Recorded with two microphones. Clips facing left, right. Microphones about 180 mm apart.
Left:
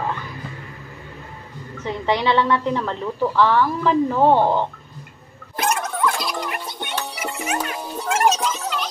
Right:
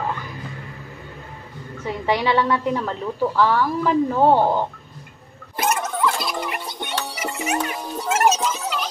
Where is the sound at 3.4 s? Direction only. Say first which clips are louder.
Left 2 dB; 45° right (ahead or behind).